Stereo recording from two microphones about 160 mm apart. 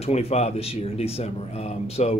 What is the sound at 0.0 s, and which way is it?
Speech, 40° left (ahead or behind).